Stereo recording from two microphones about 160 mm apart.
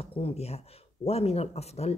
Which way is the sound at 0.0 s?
35° left (ahead or behind).